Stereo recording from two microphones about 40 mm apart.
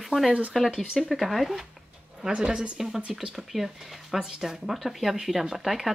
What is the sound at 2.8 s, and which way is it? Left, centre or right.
Speech, centre.